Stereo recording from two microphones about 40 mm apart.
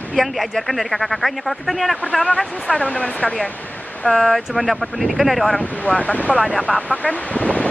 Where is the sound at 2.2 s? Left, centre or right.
Left.